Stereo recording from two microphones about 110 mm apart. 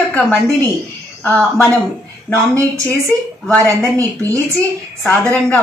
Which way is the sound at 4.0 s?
30° right (ahead or behind).